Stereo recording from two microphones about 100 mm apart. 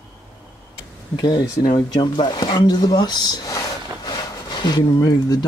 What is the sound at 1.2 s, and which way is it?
Speech, 45° left (ahead or behind).